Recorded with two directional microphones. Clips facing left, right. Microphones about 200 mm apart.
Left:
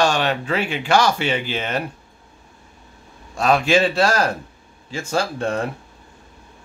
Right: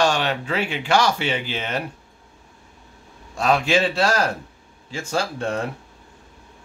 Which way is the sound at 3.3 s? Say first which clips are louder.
Left 2 dB; 50° left (ahead or behind).